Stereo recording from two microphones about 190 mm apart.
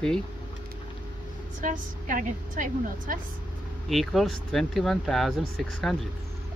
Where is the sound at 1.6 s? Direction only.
45° right (ahead or behind).